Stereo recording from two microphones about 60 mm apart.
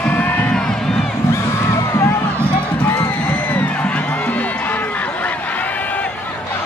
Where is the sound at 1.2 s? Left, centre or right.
Left.